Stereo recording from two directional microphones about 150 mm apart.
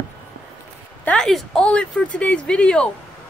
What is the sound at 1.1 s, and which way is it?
Speech, 5° left (ahead or behind).